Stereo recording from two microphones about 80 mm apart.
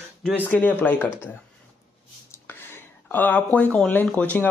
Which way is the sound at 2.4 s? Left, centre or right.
Left.